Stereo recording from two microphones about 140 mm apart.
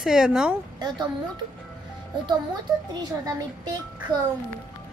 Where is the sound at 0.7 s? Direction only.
30° right (ahead or behind).